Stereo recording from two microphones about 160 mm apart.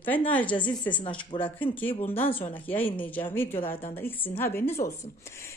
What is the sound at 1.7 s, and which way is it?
A woman's voice, 10° left (ahead or behind).